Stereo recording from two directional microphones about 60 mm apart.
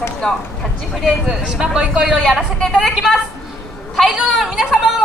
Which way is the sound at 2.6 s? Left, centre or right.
Centre.